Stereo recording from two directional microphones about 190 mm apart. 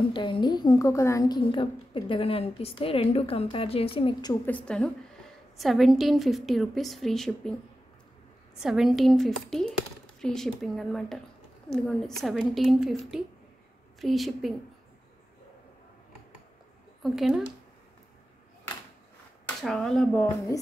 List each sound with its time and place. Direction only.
0.1 s a woman's voice: 25° left (ahead or behind)
4.5 s a woman's voice: 5° left (ahead or behind)
8.5 s a woman's voice: centre (ahead or behind)
17.0 s a woman's voice: centre (ahead or behind)
19.6 s a woman's voice: centre (ahead or behind)